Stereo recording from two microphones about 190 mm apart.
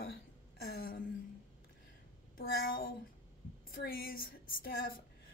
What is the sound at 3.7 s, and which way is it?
Speech, 50° left (ahead or behind).